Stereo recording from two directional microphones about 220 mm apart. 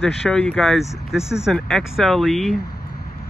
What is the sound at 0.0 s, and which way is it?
Speech, 5° left (ahead or behind).